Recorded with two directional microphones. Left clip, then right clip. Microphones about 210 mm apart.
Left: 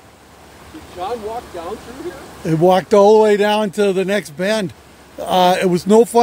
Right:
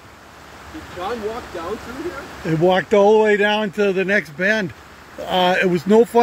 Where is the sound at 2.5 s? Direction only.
25° left (ahead or behind).